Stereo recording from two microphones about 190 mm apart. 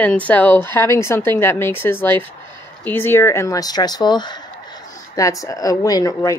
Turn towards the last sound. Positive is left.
turn(degrees=20)  # may be behind; listen again after turning